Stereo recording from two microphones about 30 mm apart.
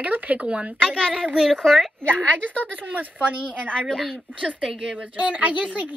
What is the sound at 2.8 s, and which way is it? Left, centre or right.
Speech, right.